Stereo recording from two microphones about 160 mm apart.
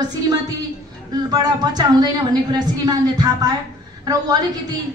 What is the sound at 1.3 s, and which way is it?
A woman's voice, 25° right (ahead or behind).